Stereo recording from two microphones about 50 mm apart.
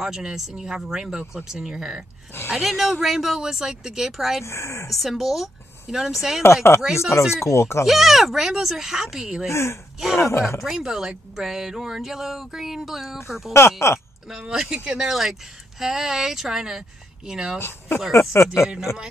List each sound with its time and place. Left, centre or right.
0.0 s speech: centre
2.5 s speech: centre
4.5 s speech: left
4.9 s a woman's voice: centre
6.4 s speech: left
7.0 s speech: left
7.8 s speech: centre
9.5 s speech: left
10.1 s speech: left
10.6 s speech: centre
13.5 s speech: left
14.5 s speech: centre
17.6 s speech: left
18.3 s speech: left